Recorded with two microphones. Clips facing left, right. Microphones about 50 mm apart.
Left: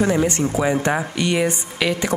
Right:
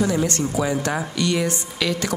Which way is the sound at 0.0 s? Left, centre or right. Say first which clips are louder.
Left 3 dB; left.